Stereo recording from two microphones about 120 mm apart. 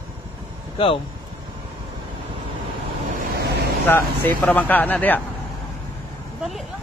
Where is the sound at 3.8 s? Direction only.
15° left (ahead or behind).